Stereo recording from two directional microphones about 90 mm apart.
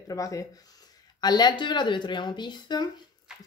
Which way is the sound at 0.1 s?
40° left (ahead or behind).